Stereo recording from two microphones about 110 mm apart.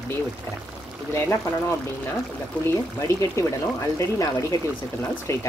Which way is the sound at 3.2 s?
25° left (ahead or behind).